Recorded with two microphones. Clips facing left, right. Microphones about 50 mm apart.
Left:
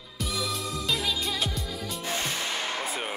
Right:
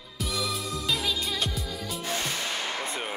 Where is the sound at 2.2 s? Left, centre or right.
Centre.